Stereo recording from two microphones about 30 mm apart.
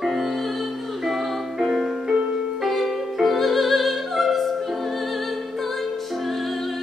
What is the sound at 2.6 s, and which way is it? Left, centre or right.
Music, centre.